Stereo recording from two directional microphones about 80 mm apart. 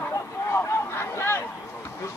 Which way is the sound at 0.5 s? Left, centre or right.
Left.